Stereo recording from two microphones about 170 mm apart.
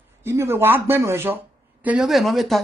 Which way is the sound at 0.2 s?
15° right (ahead or behind).